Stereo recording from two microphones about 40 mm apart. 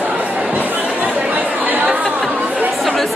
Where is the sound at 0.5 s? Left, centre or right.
Right.